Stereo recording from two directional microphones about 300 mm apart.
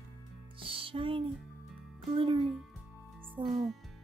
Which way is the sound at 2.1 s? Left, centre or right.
Centre.